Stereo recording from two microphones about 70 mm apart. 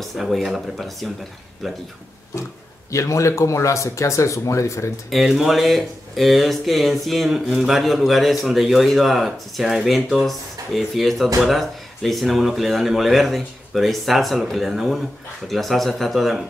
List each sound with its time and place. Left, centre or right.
0.0 s speech: centre
2.9 s speech: left
5.1 s speech: centre